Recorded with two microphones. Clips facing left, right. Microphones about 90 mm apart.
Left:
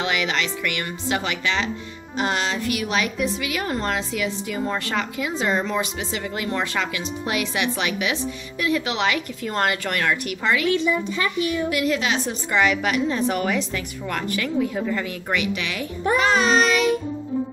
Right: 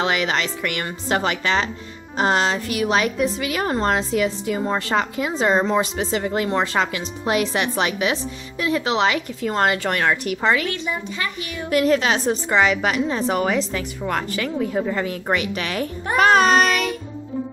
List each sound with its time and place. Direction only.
0.0 s speech: 35° right (ahead or behind)
11.7 s speech: 40° right (ahead or behind)
12.4 s a woman's voice: 25° right (ahead or behind); by 16.9 s 50° right (ahead or behind)